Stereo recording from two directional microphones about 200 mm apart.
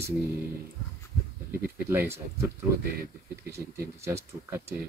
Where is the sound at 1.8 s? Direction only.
10° right (ahead or behind).